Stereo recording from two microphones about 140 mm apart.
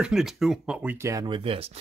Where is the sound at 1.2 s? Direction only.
40° right (ahead or behind).